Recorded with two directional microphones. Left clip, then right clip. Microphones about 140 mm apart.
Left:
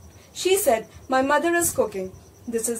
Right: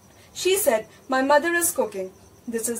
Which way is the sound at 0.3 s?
15° left (ahead or behind).